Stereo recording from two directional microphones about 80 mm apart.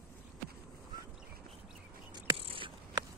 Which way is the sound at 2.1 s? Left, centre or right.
Right.